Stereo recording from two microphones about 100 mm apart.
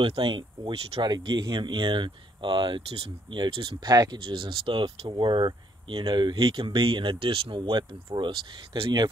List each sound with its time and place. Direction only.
0.0 s speech: 60° right (ahead or behind)
2.9 s speech: 70° right (ahead or behind)
3.3 s speech: 55° right (ahead or behind)
3.9 s speech: 40° right (ahead or behind)
4.2 s speech: 55° right (ahead or behind)